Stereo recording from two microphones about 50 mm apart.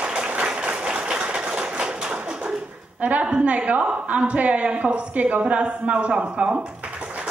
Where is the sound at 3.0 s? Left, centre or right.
Right.